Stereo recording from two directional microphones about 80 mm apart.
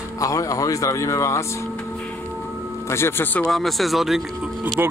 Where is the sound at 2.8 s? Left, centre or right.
Left.